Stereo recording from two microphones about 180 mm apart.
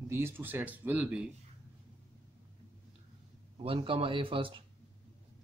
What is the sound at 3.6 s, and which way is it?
Speech, 30° right (ahead or behind).